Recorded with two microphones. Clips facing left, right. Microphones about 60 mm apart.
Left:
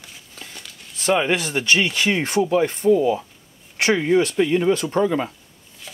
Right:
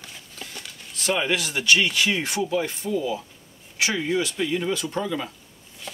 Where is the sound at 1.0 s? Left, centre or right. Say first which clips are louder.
Left 5 dB; left.